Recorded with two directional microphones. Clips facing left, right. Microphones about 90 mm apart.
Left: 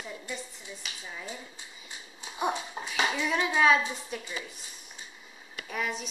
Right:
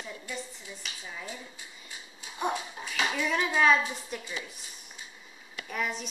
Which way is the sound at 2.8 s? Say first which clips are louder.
Left 3 dB; 40° left (ahead or behind).